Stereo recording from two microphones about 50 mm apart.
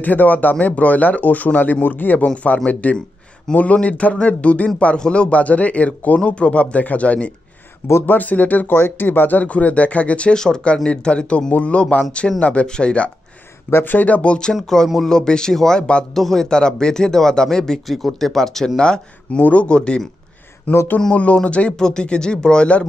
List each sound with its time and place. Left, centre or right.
0.0 s speech: left
13.7 s speech: left
13.9 s speech: left
14.5 s speech: centre
18.8 s speech: centre
20.7 s speech: left
21.1 s speech: left